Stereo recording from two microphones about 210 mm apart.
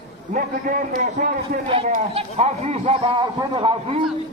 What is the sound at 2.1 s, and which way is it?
A man's voice, 30° right (ahead or behind).